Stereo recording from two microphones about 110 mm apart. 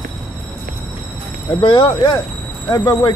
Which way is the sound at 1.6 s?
50° left (ahead or behind).